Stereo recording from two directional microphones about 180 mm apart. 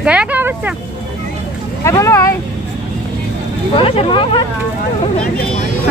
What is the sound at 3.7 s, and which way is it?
Speech, 30° left (ahead or behind).